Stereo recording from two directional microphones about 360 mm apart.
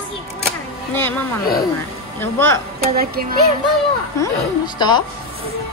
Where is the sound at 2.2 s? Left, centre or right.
Centre.